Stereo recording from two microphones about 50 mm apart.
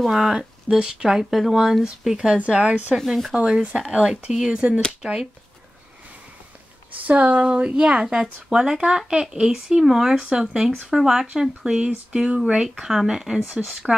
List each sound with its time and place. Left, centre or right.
0.1 s speech: centre
7.1 s speech: right
12.1 s speech: right
12.5 s speech: centre